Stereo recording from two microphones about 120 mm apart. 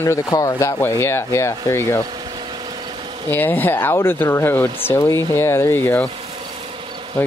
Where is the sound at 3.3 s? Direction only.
15° left (ahead or behind).